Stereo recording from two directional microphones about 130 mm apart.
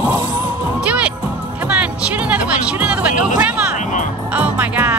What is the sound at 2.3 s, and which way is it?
Music, 10° right (ahead or behind).